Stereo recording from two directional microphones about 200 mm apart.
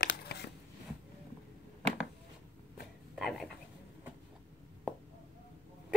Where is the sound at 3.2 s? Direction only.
Centre (ahead or behind).